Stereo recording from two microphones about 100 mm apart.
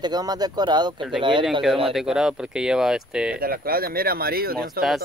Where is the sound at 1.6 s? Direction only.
Centre (ahead or behind).